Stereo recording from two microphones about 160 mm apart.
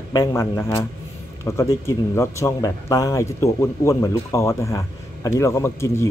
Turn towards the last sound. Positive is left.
turn(degrees=15)  # may be behind; listen again after turning